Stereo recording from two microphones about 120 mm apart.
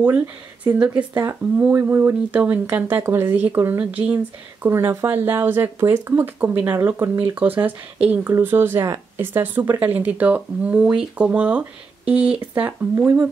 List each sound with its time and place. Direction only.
0.7 s speech: 10° right (ahead or behind)